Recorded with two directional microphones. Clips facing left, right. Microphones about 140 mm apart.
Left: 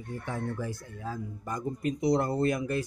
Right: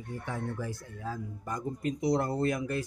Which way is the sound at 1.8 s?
20° left (ahead or behind).